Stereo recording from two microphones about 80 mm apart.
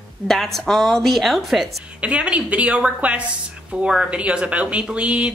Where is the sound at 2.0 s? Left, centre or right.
Centre.